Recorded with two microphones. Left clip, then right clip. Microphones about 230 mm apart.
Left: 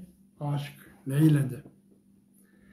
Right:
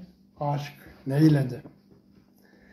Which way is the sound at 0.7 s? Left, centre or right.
Centre.